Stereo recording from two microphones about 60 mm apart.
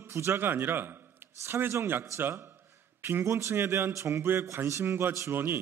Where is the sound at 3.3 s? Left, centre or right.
Right.